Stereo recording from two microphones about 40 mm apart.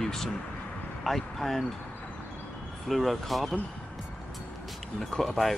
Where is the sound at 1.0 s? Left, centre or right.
Centre.